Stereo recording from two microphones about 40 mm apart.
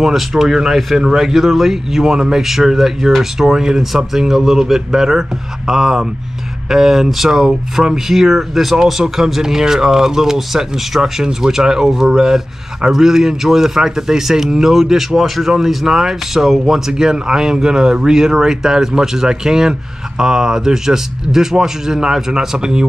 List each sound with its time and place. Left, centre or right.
0.0 s speech: centre